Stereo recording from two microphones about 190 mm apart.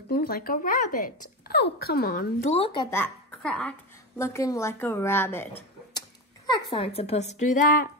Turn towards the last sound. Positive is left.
turn(degrees=45)  # may be behind; listen again after turning